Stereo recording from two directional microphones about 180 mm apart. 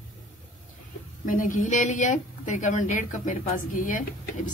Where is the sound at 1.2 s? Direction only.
50° left (ahead or behind).